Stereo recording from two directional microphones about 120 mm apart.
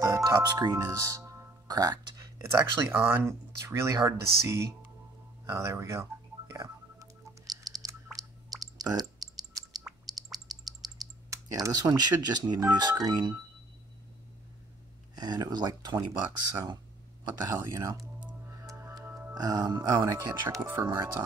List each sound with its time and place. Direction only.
0.0 s speech: 30° right (ahead or behind)
5.7 s speech: 25° right (ahead or behind)
6.6 s a sound: 30° right (ahead or behind)
11.0 s speech: 30° right (ahead or behind)
15.1 s speech: 35° right (ahead or behind)
18.5 s music: 25° right (ahead or behind)
19.3 s speech: 30° right (ahead or behind)
20.6 s speech: 15° right (ahead or behind)